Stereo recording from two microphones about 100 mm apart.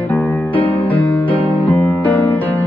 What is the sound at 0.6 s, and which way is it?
Music, 55° left (ahead or behind).